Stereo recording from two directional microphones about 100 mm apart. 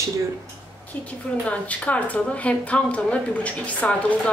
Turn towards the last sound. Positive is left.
turn(degrees=15)  # may be behind; listen again after turning